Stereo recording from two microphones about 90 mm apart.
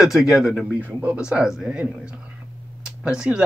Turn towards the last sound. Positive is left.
turn(degrees=-10)  # may be behind; listen again after turning